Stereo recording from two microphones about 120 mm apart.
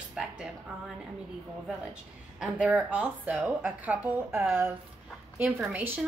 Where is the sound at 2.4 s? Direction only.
5° right (ahead or behind).